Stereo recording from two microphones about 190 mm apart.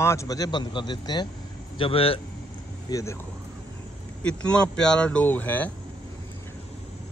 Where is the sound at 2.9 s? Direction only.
15° left (ahead or behind).